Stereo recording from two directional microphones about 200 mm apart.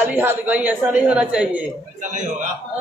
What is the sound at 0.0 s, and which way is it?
A woman's voice, 10° right (ahead or behind).